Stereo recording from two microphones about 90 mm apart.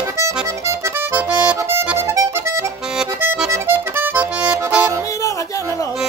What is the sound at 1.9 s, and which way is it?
Music, 30° right (ahead or behind).